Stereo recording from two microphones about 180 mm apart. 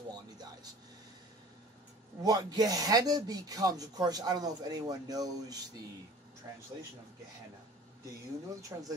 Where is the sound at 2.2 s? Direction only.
20° right (ahead or behind).